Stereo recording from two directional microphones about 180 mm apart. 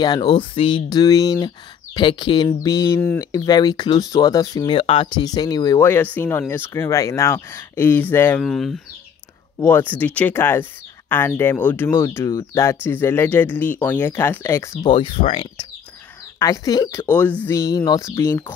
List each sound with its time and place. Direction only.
0.0 s speech: 25° left (ahead or behind)
14.9 s speech: 30° left (ahead or behind)
16.3 s speech: 20° left (ahead or behind)